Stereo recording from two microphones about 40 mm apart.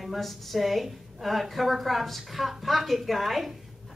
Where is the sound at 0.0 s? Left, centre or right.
Centre.